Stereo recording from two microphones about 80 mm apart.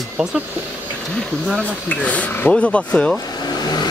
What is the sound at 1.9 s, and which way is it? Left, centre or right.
Speech, centre.